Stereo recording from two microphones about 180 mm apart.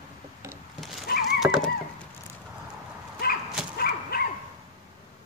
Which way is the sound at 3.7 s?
55° left (ahead or behind).